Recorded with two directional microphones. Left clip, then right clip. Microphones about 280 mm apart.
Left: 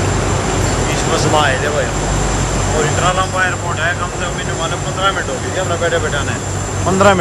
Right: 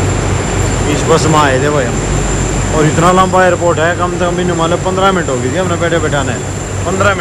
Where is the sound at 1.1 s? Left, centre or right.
Centre.